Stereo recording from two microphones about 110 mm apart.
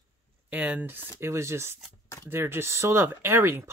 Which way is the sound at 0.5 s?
15° right (ahead or behind).